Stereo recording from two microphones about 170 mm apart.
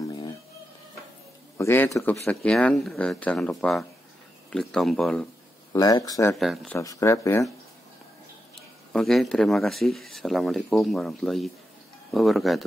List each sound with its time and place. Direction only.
1.6 s speech: 15° left (ahead or behind)
5.7 s speech: 20° left (ahead or behind)
6.3 s speech: centre (ahead or behind)
6.7 s speech: 20° left (ahead or behind)
8.9 s speech: centre (ahead or behind)